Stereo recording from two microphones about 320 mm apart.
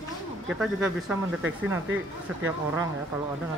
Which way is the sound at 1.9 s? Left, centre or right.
Right.